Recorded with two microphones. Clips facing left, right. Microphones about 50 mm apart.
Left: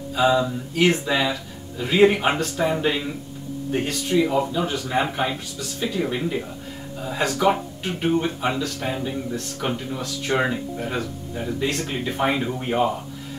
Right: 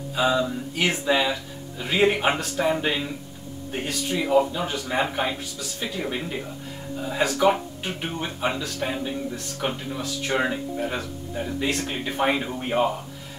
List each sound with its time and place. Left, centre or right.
0.1 s speech: centre